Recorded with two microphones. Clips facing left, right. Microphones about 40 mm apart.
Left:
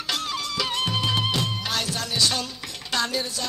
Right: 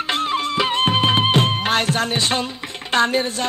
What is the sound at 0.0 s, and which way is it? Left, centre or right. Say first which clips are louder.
Music: right 8 dB; right.